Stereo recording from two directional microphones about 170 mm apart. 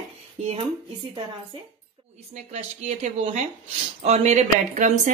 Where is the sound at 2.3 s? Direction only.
40° right (ahead or behind).